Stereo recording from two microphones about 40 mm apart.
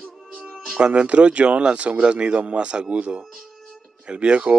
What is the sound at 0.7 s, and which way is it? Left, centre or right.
Speech, right.